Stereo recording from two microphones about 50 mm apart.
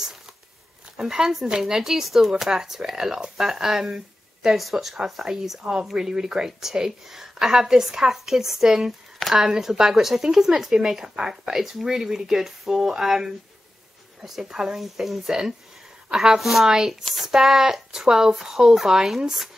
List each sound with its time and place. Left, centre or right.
0.9 s a woman's voice: centre